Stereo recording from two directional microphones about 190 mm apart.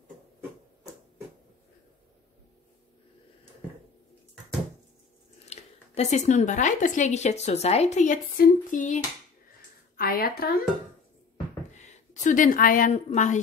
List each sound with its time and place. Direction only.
5.5 s speech: 35° left (ahead or behind)
9.9 s a woman's voice: 50° left (ahead or behind)
11.7 s a woman's voice: 40° left (ahead or behind)